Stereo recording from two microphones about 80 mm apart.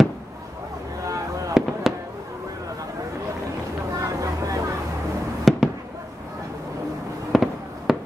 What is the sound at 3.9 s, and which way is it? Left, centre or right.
Vehicle, right.